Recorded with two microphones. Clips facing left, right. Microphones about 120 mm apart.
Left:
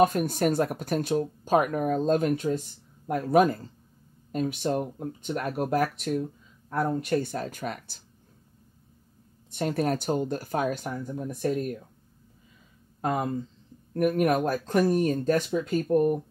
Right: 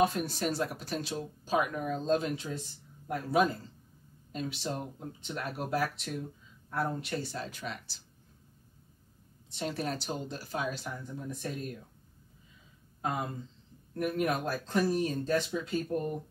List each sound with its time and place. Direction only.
0.0 s speech: 50° left (ahead or behind)
9.5 s speech: 50° left (ahead or behind)
13.0 s speech: 55° left (ahead or behind)